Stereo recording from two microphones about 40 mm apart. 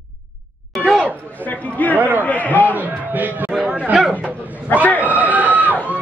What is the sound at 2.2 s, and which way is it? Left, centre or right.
Speech, left.